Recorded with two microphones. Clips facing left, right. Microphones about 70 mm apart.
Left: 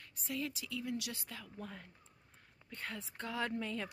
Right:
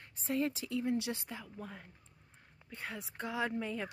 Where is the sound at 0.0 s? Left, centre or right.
Right.